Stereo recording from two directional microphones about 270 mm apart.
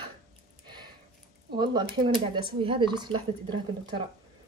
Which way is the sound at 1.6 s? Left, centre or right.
Centre.